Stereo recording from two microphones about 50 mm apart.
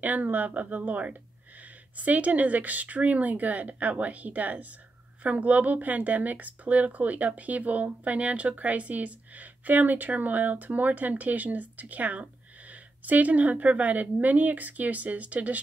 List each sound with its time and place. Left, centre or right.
0.0 s speech: right